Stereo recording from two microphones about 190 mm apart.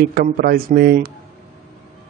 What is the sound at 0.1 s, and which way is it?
Speech, 50° right (ahead or behind).